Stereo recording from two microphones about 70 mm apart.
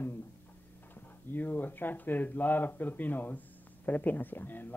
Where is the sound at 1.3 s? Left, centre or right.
Left.